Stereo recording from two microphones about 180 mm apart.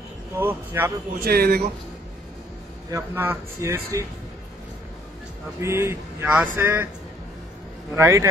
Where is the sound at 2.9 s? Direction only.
15° right (ahead or behind).